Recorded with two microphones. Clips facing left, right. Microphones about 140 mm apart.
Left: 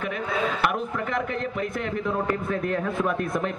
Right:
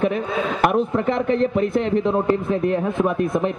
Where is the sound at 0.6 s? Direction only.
30° right (ahead or behind).